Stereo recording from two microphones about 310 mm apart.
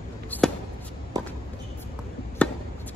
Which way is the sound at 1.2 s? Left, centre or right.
Centre.